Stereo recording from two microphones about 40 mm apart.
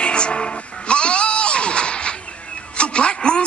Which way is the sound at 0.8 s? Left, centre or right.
Left.